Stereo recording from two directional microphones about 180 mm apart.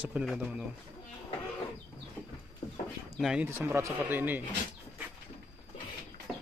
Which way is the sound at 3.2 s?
5° right (ahead or behind).